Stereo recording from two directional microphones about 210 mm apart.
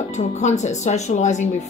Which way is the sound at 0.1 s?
35° left (ahead or behind).